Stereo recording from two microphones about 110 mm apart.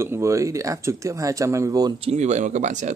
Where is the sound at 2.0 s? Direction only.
90° right.